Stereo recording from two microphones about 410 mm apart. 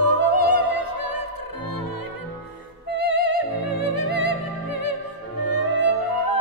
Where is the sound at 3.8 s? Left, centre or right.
Left.